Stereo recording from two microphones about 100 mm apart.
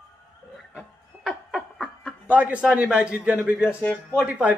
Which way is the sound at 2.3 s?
15° right (ahead or behind).